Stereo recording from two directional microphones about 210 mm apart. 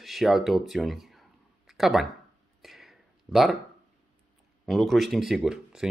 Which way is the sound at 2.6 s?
Centre (ahead or behind).